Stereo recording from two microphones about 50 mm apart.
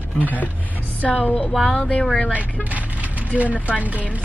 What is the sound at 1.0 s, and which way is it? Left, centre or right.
Music, left.